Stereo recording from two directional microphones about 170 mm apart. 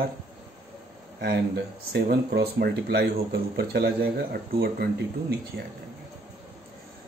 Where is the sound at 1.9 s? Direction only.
70° right (ahead or behind).